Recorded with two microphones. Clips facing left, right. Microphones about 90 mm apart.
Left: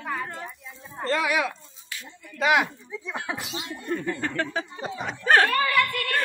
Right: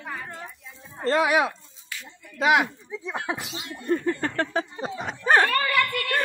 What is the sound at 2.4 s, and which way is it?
Speech, 5° right (ahead or behind).